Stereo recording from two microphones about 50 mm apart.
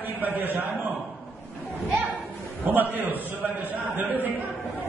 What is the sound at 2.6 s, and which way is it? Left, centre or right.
A man's voice, right.